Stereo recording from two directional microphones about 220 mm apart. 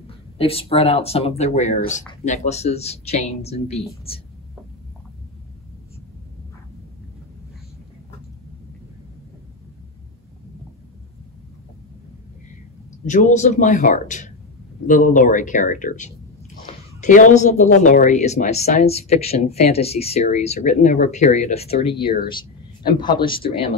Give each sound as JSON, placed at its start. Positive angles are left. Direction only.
{"t": 0.4, "sound": "speech", "side_deg": 25}
{"t": 13.0, "sound": "a woman's voice", "side_deg": 35}